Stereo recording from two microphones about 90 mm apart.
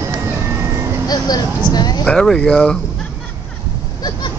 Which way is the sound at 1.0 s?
45° left (ahead or behind).